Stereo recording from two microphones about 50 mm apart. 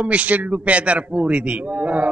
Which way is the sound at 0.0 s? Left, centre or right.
Right.